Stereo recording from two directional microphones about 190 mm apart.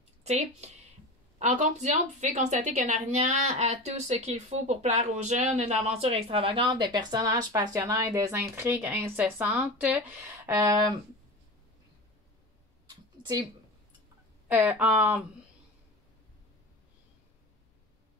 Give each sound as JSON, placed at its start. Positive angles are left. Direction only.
{"t": 0.2, "sound": "a woman's voice", "side_deg": -35}
{"t": 13.2, "sound": "speech", "side_deg": -20}
{"t": 14.5, "sound": "speech", "side_deg": -10}